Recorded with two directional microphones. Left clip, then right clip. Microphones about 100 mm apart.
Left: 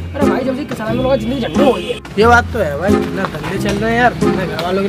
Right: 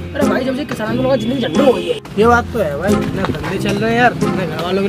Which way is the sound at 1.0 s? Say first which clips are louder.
Even; 20° left (ahead or behind).